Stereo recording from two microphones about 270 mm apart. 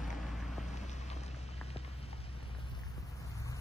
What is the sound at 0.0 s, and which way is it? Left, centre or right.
Vehicle, centre.